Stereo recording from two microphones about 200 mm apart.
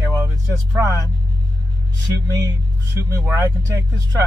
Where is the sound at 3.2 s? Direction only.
10° right (ahead or behind).